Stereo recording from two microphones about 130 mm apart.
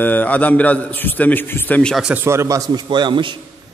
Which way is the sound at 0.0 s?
15° left (ahead or behind).